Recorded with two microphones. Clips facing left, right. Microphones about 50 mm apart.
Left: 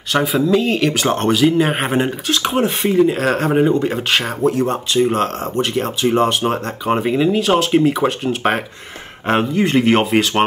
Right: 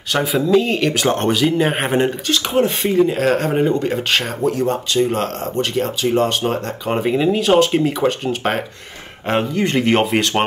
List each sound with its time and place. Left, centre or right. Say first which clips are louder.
0.1 s speech: even; centre